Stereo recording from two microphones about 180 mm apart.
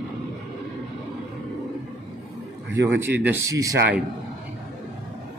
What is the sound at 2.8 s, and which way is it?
Speech, 10° right (ahead or behind).